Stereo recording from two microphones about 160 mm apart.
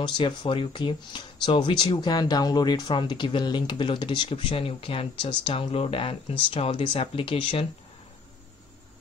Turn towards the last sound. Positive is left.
turn(degrees=35)  # may be behind; listen again after turning